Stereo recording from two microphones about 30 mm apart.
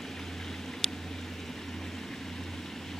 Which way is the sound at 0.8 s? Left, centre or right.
Left.